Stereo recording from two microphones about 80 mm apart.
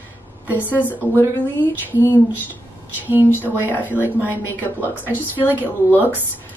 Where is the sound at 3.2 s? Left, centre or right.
Left.